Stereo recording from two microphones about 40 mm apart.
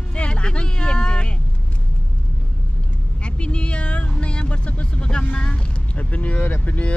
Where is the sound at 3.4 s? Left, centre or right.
Left.